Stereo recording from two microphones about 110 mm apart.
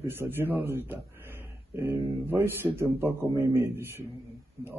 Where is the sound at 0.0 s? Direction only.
20° right (ahead or behind).